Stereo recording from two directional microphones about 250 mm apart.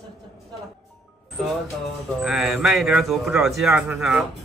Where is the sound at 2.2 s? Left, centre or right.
Centre.